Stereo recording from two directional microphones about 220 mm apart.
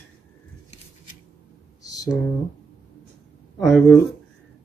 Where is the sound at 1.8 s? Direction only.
15° left (ahead or behind).